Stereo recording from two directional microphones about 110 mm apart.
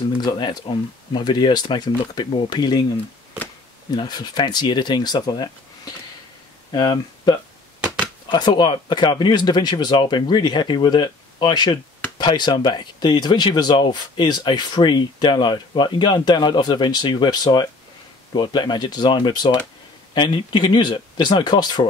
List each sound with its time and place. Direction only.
0.2 s speech: 45° left (ahead or behind)
3.9 s speech: 40° left (ahead or behind)